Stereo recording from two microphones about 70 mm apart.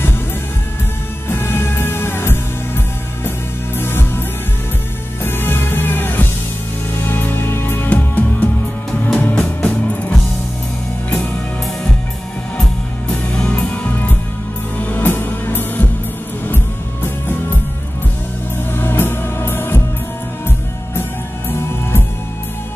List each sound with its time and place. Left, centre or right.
1.3 s music: left
5.2 s music: left
13.1 s music: centre
18.7 s music: left